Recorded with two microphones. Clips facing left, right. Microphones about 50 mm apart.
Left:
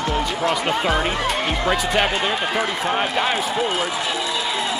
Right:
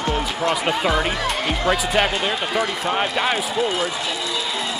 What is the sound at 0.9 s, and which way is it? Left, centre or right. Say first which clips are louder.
Speech: right 1 dB; centre.